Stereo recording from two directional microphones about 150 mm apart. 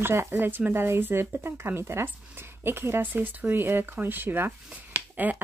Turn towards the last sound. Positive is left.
turn(degrees=-10)  # may be behind; listen again after turning